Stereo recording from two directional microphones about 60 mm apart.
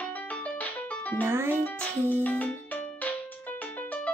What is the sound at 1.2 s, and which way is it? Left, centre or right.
Speech, right.